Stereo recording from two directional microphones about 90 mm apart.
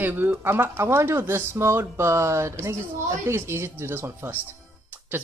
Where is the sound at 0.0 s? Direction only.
20° right (ahead or behind).